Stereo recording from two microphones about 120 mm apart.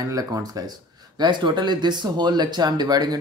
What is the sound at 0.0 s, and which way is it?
Speech, 30° right (ahead or behind).